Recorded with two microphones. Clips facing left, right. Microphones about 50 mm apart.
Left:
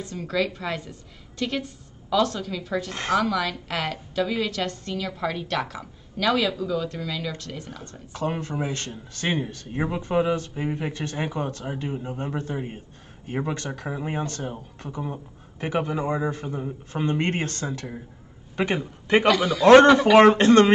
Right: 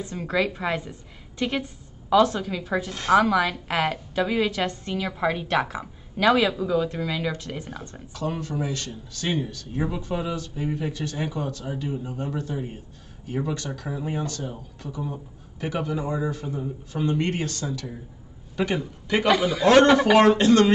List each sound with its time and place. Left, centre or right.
0.0 s a woman's voice: centre
8.1 s a man's voice: left
19.2 s a man's voice: centre
20.2 s speech: left